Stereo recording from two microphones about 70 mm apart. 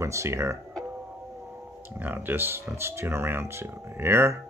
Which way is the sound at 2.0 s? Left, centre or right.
Right.